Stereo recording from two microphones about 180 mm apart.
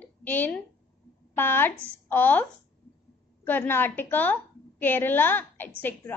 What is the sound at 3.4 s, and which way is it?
A woman's voice, 10° left (ahead or behind).